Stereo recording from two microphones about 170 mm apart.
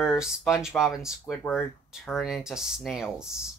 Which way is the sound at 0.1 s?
5° right (ahead or behind).